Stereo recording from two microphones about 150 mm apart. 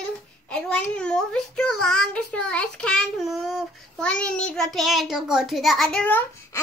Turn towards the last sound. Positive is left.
turn(degrees=10)  # may be behind; listen again after turning